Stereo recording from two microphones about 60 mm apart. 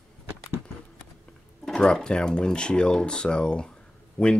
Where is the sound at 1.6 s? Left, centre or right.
Centre.